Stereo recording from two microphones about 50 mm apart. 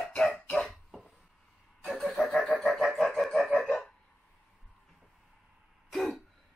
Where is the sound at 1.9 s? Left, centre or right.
Centre.